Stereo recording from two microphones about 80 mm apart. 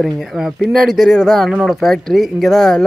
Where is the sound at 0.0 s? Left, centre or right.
Centre.